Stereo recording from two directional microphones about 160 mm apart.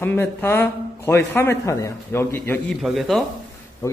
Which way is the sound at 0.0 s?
15° left (ahead or behind).